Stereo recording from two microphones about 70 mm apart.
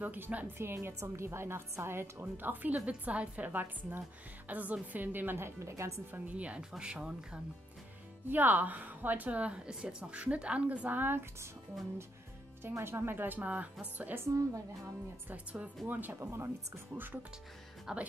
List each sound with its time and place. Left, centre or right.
0.0 s a woman's voice: right
0.6 s a woman's voice: right
5.6 s a woman's voice: right
6.1 s a woman's voice: right
8.3 s a woman's voice: right
12.7 s a woman's voice: right
15.2 s a woman's voice: right
16.2 s a woman's voice: right
17.9 s speech: centre